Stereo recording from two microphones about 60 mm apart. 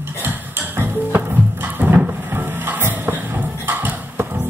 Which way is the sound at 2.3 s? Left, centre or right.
Right.